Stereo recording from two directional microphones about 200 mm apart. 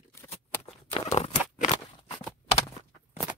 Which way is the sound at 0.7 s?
30° left (ahead or behind).